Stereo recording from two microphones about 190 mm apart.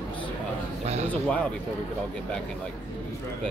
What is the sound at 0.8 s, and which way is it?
Speech, 35° right (ahead or behind).